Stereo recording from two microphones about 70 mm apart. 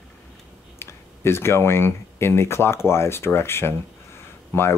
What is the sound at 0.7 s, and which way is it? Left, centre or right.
Speech, left.